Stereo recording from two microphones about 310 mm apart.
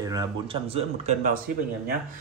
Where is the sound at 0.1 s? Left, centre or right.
Centre.